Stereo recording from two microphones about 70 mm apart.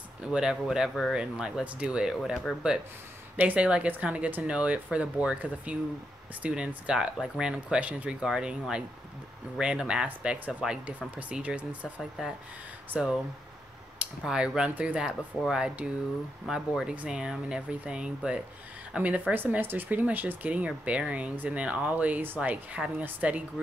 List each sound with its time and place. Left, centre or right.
0.2 s speech: centre
3.3 s speech: right
12.0 s speech: centre
16.9 s speech: centre